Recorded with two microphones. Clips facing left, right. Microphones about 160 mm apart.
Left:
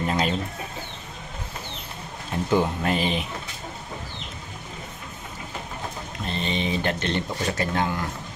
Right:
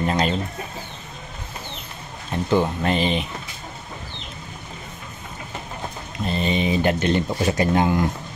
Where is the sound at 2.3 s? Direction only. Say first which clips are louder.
Right 2 dB; 5° left (ahead or behind).